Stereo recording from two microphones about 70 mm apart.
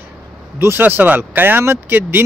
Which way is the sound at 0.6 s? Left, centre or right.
Right.